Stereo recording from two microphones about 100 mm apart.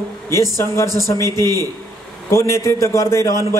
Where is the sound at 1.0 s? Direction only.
30° left (ahead or behind).